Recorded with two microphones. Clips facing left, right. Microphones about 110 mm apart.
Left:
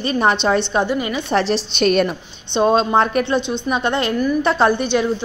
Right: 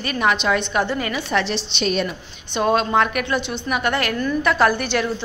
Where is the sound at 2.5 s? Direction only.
25° left (ahead or behind).